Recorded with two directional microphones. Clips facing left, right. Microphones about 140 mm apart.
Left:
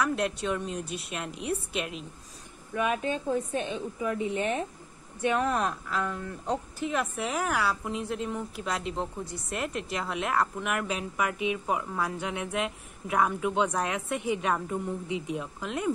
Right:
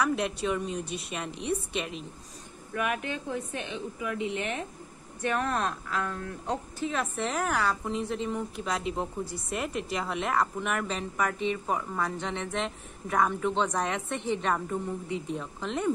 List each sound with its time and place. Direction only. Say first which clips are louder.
0.0 s a woman's voice: even; centre (ahead or behind)
2.7 s a woman's voice: left 3 dB; 25° left (ahead or behind)
5.4 s a woman's voice: left 2 dB; 5° left (ahead or behind)
15.6 s a woman's voice: right 3 dB; 5° left (ahead or behind)